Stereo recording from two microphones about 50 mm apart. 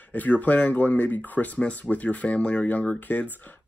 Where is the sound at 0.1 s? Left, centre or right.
Left.